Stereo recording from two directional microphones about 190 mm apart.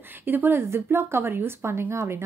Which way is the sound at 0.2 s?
10° right (ahead or behind).